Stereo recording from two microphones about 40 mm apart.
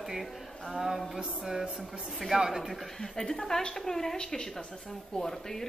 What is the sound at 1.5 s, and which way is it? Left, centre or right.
Speech, centre.